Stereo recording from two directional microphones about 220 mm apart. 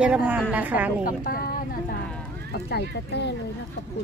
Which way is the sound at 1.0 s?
40° left (ahead or behind).